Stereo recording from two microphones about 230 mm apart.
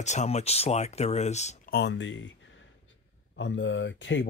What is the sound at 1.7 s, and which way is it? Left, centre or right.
Speech, left.